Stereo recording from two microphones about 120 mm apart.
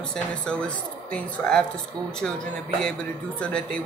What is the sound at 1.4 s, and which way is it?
Speech, 15° left (ahead or behind).